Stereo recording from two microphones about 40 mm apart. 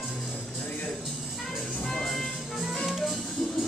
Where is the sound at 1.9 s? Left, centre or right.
Centre.